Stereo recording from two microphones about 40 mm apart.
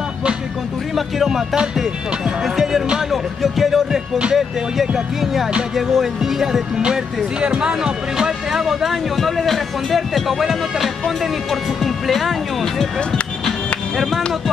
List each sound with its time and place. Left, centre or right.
0.9 s music: centre
2.4 s music: centre
4.4 s speech: centre
7.3 s speech: right
9.1 s speech: centre
13.5 s music: centre